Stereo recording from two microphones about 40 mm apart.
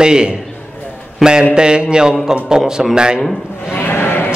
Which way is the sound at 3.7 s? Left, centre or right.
Left.